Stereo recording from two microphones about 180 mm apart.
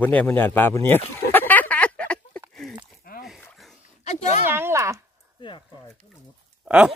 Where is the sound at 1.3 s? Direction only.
10° left (ahead or behind).